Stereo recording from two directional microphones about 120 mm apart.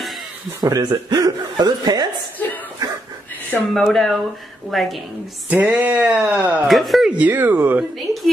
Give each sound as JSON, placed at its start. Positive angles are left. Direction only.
{"t": 0.6, "sound": "speech", "side_deg": -30}
{"t": 3.7, "sound": "speech", "side_deg": 0}
{"t": 5.5, "sound": "a sound", "side_deg": -15}
{"t": 6.7, "sound": "speech", "side_deg": 0}
{"t": 7.2, "sound": "a sound", "side_deg": -15}
{"t": 8.1, "sound": "speech", "side_deg": 0}